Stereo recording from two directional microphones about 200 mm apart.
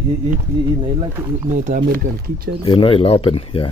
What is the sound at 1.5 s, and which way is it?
Speech, 40° right (ahead or behind).